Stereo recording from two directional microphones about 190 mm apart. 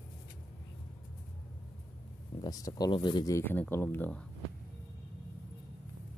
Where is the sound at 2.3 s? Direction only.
20° left (ahead or behind).